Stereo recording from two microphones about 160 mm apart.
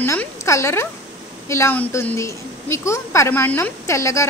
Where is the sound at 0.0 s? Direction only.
15° left (ahead or behind).